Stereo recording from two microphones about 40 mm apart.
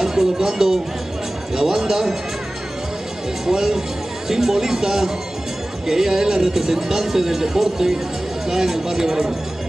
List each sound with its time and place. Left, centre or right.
0.0 s a sound: centre
1.5 s speech: centre
3.4 s speech: centre